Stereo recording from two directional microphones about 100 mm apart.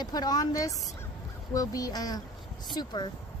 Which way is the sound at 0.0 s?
45° left (ahead or behind).